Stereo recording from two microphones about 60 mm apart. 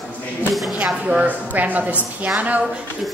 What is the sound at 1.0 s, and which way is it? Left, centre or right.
A woman's voice, right.